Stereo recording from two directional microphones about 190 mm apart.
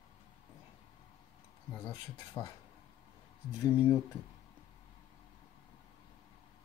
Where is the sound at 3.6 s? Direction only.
15° left (ahead or behind).